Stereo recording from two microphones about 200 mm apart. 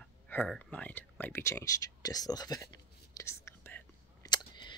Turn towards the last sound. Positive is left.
turn(degrees=20)  # may be behind; listen again after turning